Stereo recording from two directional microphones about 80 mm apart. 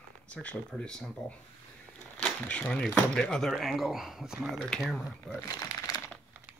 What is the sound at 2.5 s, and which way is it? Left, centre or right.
Speech, centre.